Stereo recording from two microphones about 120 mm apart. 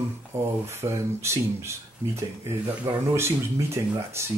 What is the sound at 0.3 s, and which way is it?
Speech, 20° right (ahead or behind).